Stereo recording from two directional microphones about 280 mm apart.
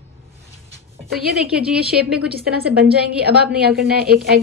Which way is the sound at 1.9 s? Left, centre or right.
Centre.